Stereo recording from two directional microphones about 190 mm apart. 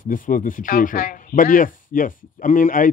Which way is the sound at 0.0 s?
45° left (ahead or behind).